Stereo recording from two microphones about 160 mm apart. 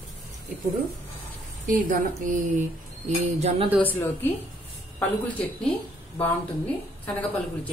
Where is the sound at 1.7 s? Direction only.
55° right (ahead or behind).